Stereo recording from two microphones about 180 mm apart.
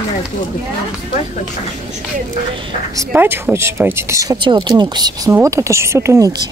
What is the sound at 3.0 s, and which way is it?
Speech, 10° right (ahead or behind).